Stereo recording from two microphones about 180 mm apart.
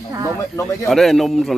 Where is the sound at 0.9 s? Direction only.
Centre (ahead or behind).